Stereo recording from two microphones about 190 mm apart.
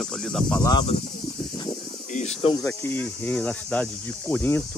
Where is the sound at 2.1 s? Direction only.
35° left (ahead or behind).